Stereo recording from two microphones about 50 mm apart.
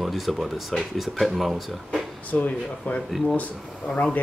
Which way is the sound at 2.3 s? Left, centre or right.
Left.